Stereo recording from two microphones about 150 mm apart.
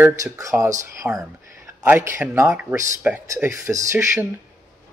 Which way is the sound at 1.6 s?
15° right (ahead or behind).